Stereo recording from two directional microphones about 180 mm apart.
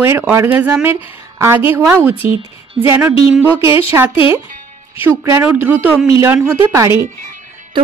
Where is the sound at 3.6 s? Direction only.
30° left (ahead or behind).